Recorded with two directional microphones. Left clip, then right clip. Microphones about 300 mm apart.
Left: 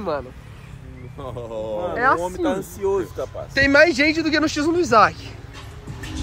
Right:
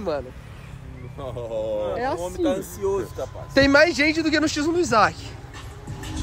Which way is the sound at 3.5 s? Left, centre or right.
Centre.